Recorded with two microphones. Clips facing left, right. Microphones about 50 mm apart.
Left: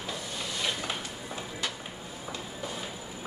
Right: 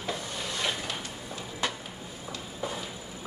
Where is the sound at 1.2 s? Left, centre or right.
Centre.